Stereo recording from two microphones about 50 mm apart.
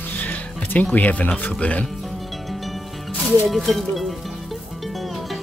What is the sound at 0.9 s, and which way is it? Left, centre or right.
Speech, left.